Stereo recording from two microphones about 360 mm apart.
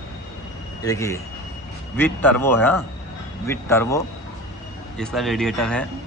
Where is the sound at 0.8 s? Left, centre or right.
Centre.